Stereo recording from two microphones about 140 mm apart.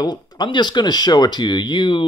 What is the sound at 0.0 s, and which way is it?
Speech, 30° left (ahead or behind).